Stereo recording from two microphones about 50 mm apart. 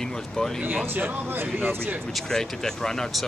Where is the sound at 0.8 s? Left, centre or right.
Right.